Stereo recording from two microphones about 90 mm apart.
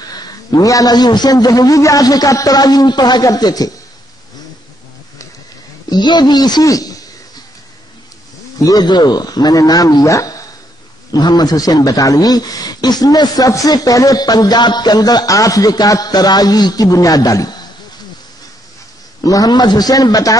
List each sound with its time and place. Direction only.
0.1 s a man's voice: 50° left (ahead or behind)
5.9 s a sound: 55° left (ahead or behind)
8.6 s a man's voice: 50° left (ahead or behind)
19.2 s a man's voice: 45° left (ahead or behind)